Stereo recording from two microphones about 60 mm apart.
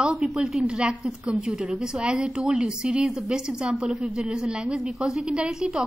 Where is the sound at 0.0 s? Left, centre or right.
Centre.